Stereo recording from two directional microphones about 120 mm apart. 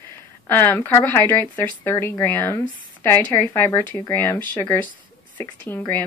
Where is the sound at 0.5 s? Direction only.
20° left (ahead or behind).